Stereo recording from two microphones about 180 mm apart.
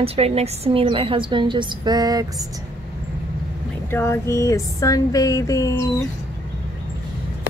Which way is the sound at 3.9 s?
15° left (ahead or behind).